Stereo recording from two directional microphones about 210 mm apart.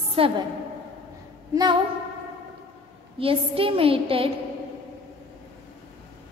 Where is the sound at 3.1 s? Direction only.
25° right (ahead or behind).